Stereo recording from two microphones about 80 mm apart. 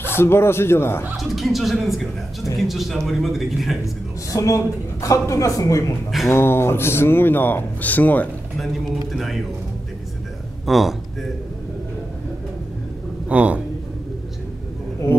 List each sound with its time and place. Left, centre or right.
0.0 s speech: left
1.1 s a man's voice: centre
4.3 s speech: left
6.2 s speech: left
8.5 s a man's voice: centre
10.6 s a man's voice: centre
13.3 s a sound: centre